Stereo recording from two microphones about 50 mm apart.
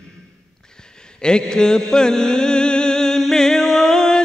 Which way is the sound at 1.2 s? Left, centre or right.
Centre.